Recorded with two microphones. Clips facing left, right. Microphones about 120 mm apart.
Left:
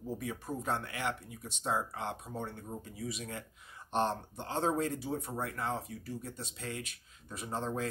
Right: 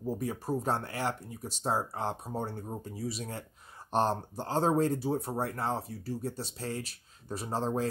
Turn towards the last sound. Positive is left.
turn(degrees=-35)  # may be behind; listen again after turning